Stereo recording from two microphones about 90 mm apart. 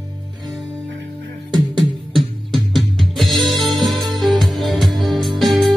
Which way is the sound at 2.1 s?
Centre (ahead or behind).